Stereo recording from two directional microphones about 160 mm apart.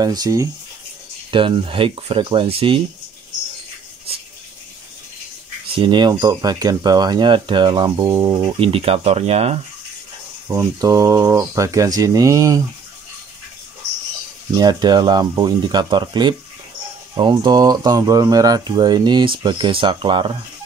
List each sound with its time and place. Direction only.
0.0 s speech: 25° right (ahead or behind)
1.3 s speech: 35° right (ahead or behind)
5.8 s speech: 30° right (ahead or behind)
10.5 s speech: 20° right (ahead or behind)
14.6 s speech: 25° right (ahead or behind)